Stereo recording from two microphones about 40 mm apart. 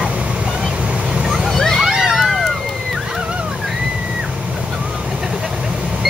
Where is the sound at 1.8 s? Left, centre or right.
Centre.